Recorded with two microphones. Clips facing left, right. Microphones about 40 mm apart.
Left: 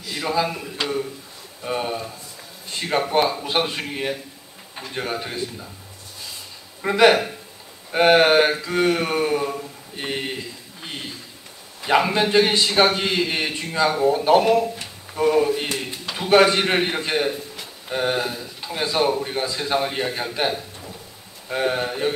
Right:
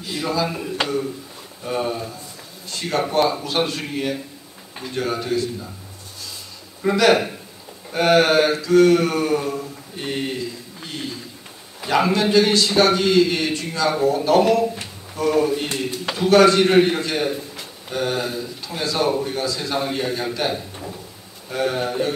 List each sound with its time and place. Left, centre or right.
0.1 s speech: left
1.6 s speech: centre
2.7 s a sound: left
3.1 s a man's voice: centre
6.8 s a man's voice: left
10.8 s a sound: left
11.9 s a man's voice: left